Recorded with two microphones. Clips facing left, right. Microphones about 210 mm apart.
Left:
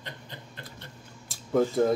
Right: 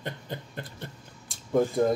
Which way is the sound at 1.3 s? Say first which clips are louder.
Left 1 dB; centre (ahead or behind).